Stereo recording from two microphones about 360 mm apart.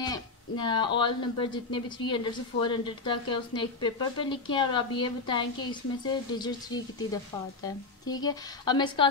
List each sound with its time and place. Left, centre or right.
0.0 s speech: centre